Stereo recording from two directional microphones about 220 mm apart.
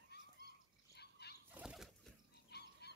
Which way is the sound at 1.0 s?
50° left (ahead or behind).